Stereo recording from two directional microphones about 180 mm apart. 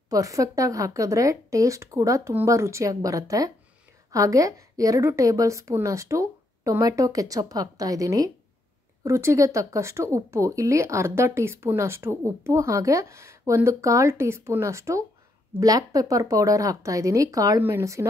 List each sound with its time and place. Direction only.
0.1 s a woman's voice: 20° right (ahead or behind)